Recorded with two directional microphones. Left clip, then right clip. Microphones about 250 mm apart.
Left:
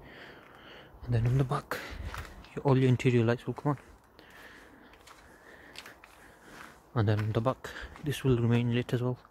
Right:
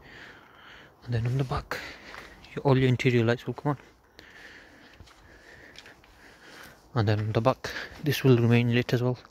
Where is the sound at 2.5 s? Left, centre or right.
Centre.